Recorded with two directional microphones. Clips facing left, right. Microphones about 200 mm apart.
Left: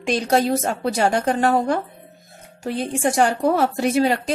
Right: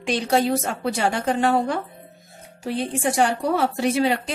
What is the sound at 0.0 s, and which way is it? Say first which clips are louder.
A woman's voice: left 2 dB; 45° left (ahead or behind).